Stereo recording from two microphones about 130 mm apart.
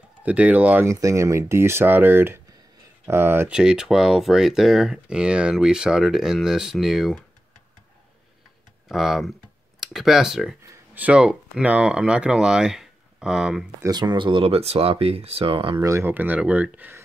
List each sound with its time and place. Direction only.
0.2 s speech: 10° right (ahead or behind)
3.5 s speech: 5° right (ahead or behind)
8.8 s speech: centre (ahead or behind)
13.7 s speech: 30° right (ahead or behind)
15.8 s speech: 20° right (ahead or behind)